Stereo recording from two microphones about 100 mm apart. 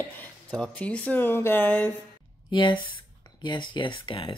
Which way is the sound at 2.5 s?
55° left (ahead or behind).